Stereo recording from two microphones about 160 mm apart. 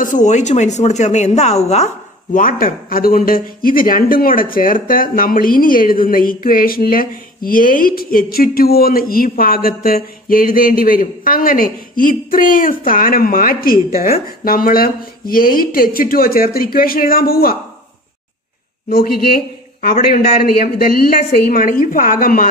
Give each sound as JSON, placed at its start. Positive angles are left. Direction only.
{"t": 0.0, "sound": "a woman's voice", "side_deg": 50}
{"t": 2.3, "sound": "speech", "side_deg": 60}
{"t": 18.9, "sound": "speech", "side_deg": 75}